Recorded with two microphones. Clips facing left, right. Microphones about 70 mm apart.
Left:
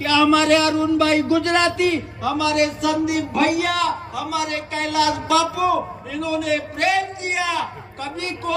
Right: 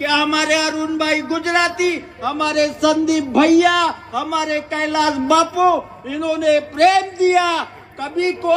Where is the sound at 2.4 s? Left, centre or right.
Right.